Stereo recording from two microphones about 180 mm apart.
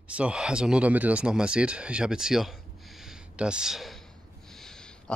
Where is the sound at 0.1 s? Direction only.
5° right (ahead or behind).